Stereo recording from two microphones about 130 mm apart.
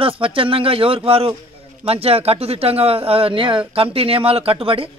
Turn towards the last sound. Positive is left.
turn(degrees=-45)  # may be behind; listen again after turning